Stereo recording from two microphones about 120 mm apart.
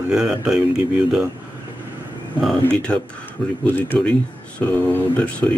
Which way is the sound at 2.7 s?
10° left (ahead or behind).